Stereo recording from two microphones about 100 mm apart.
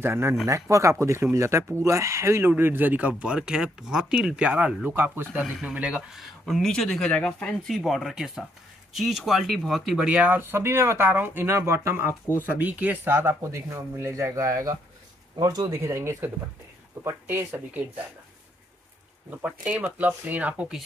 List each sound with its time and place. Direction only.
0.0 s speech: 25° right (ahead or behind)
5.4 s speech: 10° right (ahead or behind)
6.1 s speech: centre (ahead or behind); by 12.2 s 25° right (ahead or behind)
12.4 s speech: 15° right (ahead or behind)
19.4 s speech: 15° right (ahead or behind)